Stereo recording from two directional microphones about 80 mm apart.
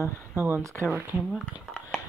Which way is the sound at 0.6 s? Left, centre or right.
Right.